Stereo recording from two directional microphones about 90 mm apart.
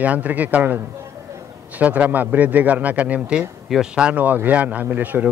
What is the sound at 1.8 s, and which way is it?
A man's voice, 15° right (ahead or behind).